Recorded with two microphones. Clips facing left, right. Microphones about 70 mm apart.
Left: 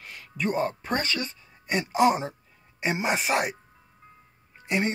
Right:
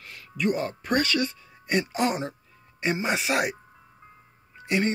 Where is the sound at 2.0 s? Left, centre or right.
Centre.